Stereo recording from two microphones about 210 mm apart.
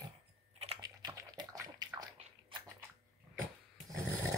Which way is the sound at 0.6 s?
25° right (ahead or behind).